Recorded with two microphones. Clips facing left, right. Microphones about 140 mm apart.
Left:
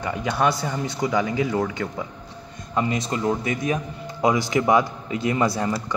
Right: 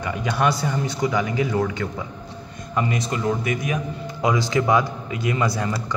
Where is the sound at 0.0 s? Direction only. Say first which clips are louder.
Even; 25° left (ahead or behind).